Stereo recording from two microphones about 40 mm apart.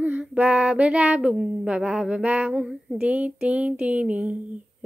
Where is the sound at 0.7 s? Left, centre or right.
Right.